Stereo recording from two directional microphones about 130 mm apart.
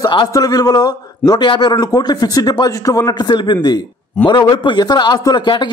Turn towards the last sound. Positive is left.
turn(degrees=35)  # may be behind; listen again after turning